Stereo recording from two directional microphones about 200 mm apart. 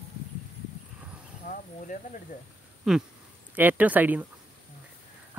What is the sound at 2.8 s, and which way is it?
A man's voice, centre (ahead or behind).